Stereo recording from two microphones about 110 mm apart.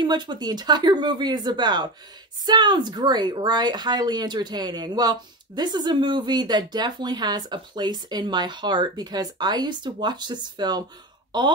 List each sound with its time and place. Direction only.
0.0 s speech: 40° right (ahead or behind)